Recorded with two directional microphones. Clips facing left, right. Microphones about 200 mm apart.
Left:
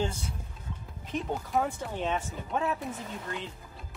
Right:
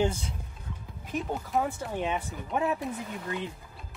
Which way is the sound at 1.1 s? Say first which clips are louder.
Even; centre (ahead or behind).